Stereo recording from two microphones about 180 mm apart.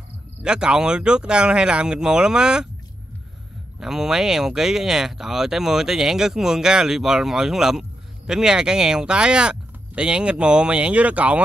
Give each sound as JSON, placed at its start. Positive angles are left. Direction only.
{"t": 0.4, "sound": "speech", "side_deg": -5}
{"t": 3.8, "sound": "speech", "side_deg": -5}